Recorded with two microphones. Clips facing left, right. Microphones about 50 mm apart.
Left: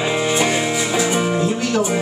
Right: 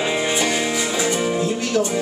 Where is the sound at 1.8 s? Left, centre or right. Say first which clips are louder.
Right 1 dB; left.